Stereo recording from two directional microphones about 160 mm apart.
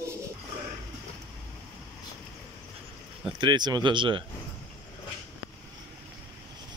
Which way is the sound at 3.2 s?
30° right (ahead or behind).